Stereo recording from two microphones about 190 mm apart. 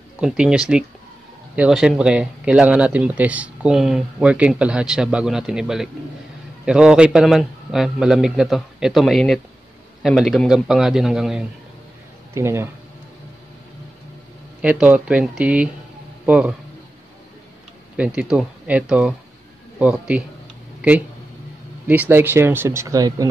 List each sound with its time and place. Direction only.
0.2 s speech: 5° right (ahead or behind)
12.4 s speech: 15° right (ahead or behind)
14.6 s speech: 5° right (ahead or behind)
17.9 s speech: 5° right (ahead or behind)
21.8 s speech: 10° right (ahead or behind)